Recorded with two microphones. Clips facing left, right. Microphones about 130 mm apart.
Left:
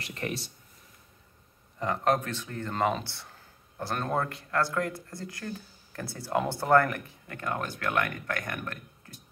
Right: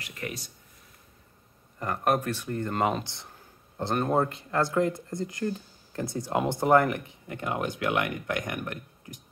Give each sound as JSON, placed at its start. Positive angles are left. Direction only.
{"t": 0.0, "sound": "speech", "side_deg": 30}
{"t": 1.8, "sound": "speech", "side_deg": -5}